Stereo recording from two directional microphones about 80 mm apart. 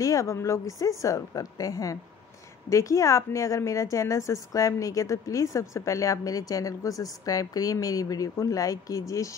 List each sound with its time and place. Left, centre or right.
0.0 s a woman's voice: left